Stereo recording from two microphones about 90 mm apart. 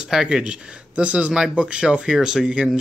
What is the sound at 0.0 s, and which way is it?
Speech, 5° right (ahead or behind).